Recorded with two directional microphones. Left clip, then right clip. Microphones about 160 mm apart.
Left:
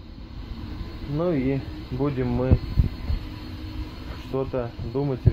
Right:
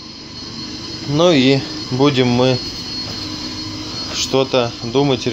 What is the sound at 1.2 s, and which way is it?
Speech, 35° right (ahead or behind).